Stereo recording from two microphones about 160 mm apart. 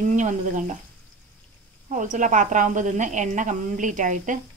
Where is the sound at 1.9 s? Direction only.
55° right (ahead or behind).